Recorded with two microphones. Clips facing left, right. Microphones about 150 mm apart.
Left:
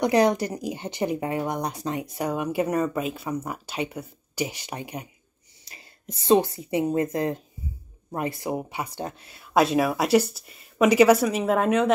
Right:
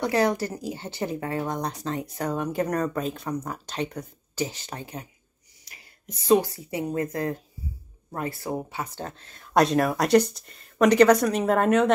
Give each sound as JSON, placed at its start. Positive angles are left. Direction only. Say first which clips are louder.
{"t": 0.0, "sound": "speech", "louder": "left 3 dB", "side_deg": 20}
{"t": 5.7, "sound": "speech", "louder": "left 3 dB", "side_deg": 30}